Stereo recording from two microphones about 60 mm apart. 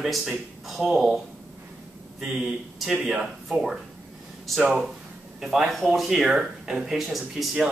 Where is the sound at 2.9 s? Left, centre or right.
Centre.